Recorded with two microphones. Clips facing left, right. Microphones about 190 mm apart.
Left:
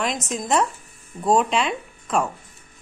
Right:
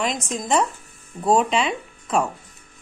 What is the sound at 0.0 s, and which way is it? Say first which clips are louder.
Speech: even; centre (ahead or behind).